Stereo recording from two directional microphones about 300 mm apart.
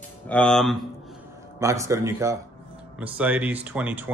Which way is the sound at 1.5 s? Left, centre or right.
Centre.